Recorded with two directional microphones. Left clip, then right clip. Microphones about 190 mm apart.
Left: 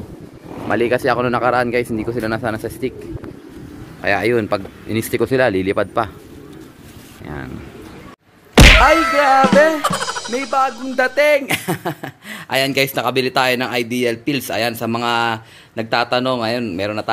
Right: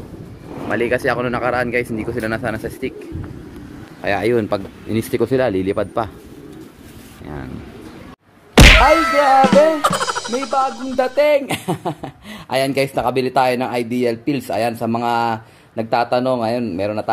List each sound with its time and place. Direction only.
0.7 s speech: 30° left (ahead or behind)
4.0 s speech: centre (ahead or behind)
8.5 s a sound: centre (ahead or behind)